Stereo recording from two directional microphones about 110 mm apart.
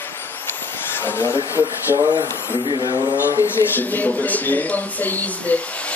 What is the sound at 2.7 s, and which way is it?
Speech, 45° right (ahead or behind).